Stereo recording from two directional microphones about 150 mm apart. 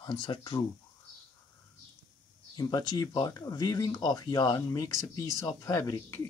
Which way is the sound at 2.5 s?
25° left (ahead or behind).